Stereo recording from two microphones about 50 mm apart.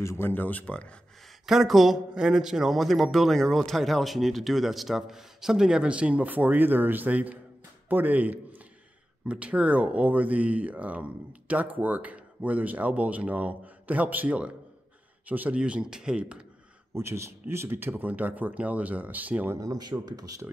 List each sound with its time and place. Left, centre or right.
0.2 s speech: left
1.4 s speech: centre
5.9 s speech: right
16.9 s speech: right
19.9 s speech: right
20.4 s speech: right